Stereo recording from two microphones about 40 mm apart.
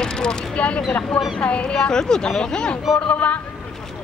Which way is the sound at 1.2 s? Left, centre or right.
Left.